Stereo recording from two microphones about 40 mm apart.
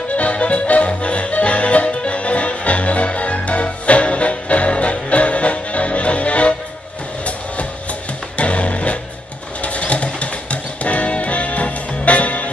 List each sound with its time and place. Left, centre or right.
0.1 s music: left
8.4 s music: left